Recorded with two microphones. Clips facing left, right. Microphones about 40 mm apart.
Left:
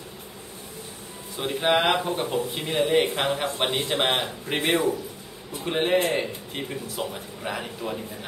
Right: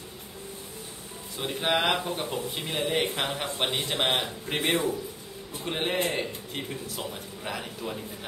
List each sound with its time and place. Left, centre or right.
1.3 s speech: centre